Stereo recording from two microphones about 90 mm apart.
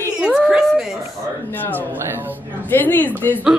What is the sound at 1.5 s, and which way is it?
A woman's voice, 20° left (ahead or behind).